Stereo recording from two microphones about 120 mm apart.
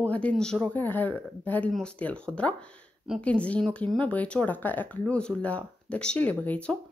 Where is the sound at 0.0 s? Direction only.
10° left (ahead or behind).